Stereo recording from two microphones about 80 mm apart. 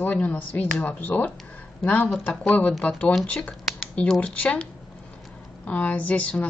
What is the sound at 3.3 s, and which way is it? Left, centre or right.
Computer keyboard, centre.